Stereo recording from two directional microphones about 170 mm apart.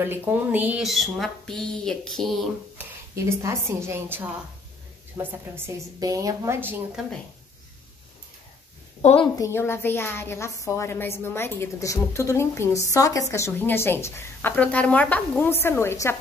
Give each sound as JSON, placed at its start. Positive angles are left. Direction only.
{"t": 0.0, "sound": "a woman's voice", "side_deg": -10}
{"t": 3.3, "sound": "speech", "side_deg": -15}
{"t": 9.0, "sound": "a woman's voice", "side_deg": 35}
{"t": 9.3, "sound": "a woman's voice", "side_deg": 15}